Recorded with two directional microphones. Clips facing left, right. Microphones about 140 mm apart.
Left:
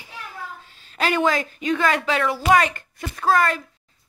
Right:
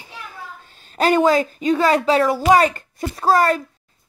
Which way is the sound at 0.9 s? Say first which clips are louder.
Right 6 dB; 40° right (ahead or behind).